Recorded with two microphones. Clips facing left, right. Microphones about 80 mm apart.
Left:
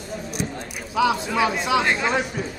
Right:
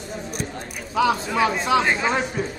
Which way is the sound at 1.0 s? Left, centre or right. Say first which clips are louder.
Even; right.